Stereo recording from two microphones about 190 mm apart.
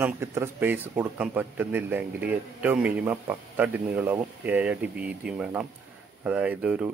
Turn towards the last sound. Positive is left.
turn(degrees=-10)  # may be behind; listen again after turning